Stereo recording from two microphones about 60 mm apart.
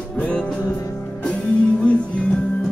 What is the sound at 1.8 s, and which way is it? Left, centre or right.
Music, left.